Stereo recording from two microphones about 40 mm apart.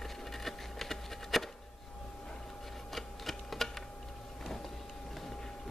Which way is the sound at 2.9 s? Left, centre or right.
Centre.